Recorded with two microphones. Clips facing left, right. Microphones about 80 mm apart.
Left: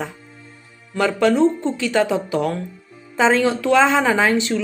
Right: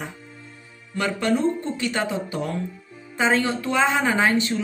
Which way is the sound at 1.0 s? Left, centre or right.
Left.